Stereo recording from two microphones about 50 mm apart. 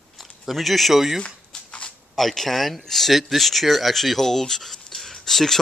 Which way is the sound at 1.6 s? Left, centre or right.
Left.